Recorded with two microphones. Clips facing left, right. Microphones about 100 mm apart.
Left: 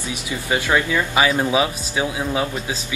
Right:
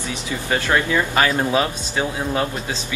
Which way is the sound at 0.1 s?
15° left (ahead or behind).